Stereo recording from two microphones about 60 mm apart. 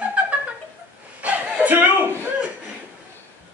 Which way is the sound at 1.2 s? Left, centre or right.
Right.